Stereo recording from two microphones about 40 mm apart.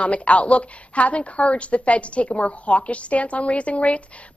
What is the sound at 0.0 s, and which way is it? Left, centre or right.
A woman's voice, left.